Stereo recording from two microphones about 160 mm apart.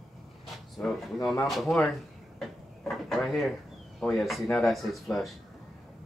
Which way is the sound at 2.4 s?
Centre (ahead or behind).